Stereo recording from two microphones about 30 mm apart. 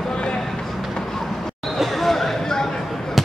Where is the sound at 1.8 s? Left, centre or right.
Centre.